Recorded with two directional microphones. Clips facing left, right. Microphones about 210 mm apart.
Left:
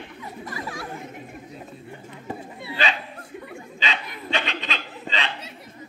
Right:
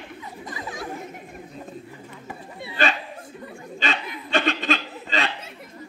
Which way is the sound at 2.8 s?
50° right (ahead or behind).